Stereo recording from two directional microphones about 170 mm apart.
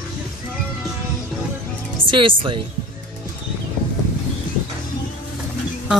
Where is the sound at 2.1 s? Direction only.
30° right (ahead or behind).